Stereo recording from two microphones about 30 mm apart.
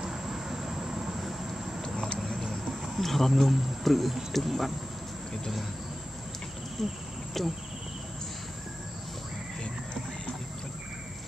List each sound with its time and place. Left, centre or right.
0.1 s vehicle: centre
3.0 s speech: centre
6.8 s speech: centre